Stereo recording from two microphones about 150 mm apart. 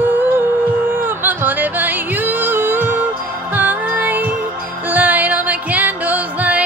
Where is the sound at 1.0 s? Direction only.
15° right (ahead or behind).